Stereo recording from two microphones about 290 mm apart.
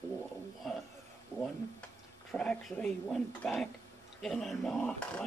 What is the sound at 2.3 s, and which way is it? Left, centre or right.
Speech, centre.